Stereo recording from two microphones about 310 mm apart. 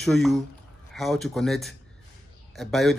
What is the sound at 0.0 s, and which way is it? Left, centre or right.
Speech, centre.